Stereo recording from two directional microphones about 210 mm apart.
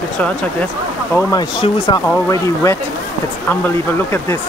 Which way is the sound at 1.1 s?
20° left (ahead or behind).